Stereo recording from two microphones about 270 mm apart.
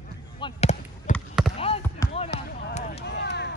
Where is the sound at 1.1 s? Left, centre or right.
Centre.